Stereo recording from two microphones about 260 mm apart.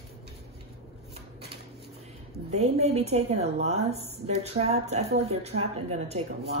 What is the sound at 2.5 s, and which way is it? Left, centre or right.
A woman's voice, right.